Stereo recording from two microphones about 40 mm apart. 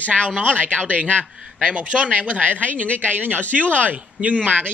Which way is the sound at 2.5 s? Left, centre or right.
Left.